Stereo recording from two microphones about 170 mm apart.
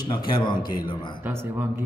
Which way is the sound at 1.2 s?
15° right (ahead or behind).